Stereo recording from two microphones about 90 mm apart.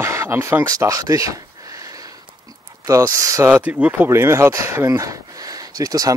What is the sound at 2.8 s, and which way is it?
Speech, 35° right (ahead or behind).